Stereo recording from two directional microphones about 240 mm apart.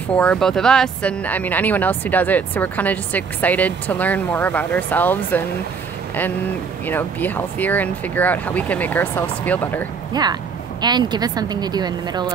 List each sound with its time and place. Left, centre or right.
0.2 s speech: centre
6.9 s speech: centre
10.2 s a woman's voice: centre